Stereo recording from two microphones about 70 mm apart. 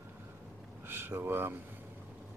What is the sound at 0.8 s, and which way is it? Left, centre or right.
Speech, right.